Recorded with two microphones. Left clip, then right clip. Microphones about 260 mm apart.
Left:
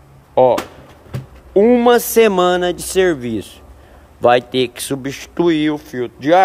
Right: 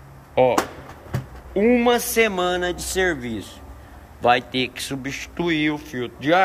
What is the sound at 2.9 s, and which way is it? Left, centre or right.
A man's voice, left.